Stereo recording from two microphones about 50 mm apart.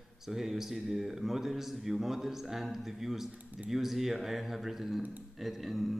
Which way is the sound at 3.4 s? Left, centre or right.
Right.